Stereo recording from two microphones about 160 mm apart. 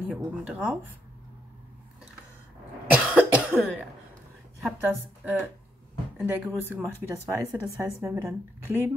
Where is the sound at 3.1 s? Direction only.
5° right (ahead or behind).